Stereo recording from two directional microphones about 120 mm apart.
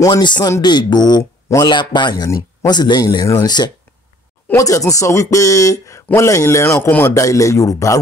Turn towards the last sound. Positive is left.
turn(degrees=25)  # may be behind; listen again after turning